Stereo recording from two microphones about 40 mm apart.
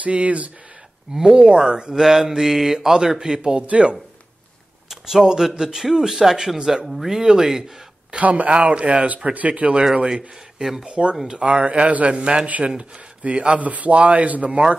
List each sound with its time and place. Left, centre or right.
0.0 s a man's voice: right
1.1 s a man's voice: right
2.0 s speech: centre
3.6 s a man's voice: right
4.8 s speech: centre
8.2 s a man's voice: right
10.0 s speech: centre
10.9 s a man's voice: right
12.4 s a man's voice: right